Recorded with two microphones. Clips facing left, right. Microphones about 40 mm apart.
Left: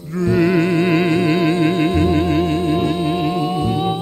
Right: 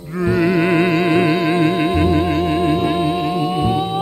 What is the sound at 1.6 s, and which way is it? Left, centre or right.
Music, centre.